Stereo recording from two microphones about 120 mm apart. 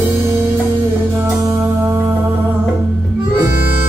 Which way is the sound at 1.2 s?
25° right (ahead or behind).